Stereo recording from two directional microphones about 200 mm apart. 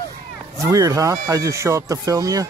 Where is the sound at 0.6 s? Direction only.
15° right (ahead or behind).